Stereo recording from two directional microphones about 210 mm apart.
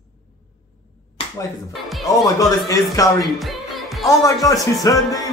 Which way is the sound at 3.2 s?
Centre (ahead or behind).